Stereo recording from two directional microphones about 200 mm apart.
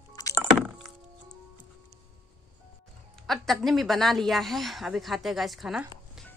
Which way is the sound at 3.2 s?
Centre (ahead or behind).